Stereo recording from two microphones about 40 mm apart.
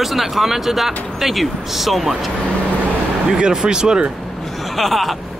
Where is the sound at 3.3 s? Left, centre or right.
Right.